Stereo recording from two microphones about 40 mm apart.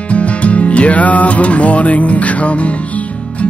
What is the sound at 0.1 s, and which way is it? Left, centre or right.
Music, left.